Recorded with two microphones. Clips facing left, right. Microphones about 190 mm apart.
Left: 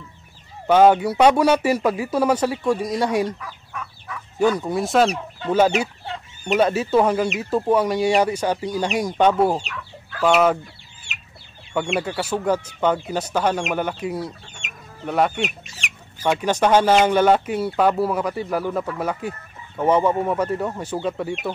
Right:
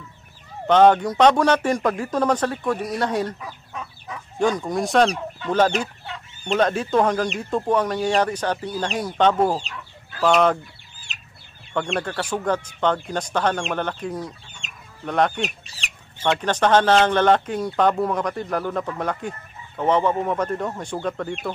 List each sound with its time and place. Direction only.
0.7 s speech: 10° left (ahead or behind)
3.3 s fowl: 20° right (ahead or behind)
4.4 s speech: 5° left (ahead or behind)
11.1 s chicken: 35° right (ahead or behind)
11.7 s speech: 10° left (ahead or behind)
14.6 s chicken: 35° right (ahead or behind)
15.0 s speech: 5° left (ahead or behind)
15.4 s chicken: 35° right (ahead or behind)
16.3 s speech: 10° left (ahead or behind)